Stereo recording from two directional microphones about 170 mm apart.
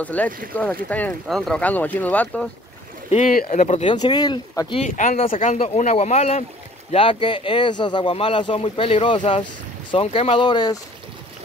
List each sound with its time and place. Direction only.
0.0 s speech: 10° left (ahead or behind)
3.1 s speech: 50° left (ahead or behind)
3.6 s speech: 40° left (ahead or behind)
3.9 s speech: 25° left (ahead or behind)
4.8 s speech: 50° left (ahead or behind)
5.2 s speech: 35° left (ahead or behind)